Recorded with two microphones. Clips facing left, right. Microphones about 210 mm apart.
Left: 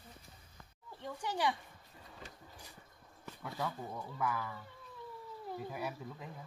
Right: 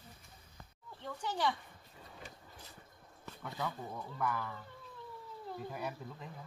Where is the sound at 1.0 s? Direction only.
15° left (ahead or behind).